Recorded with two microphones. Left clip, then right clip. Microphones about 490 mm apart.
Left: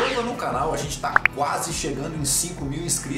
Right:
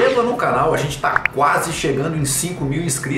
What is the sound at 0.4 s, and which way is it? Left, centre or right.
Speech, left.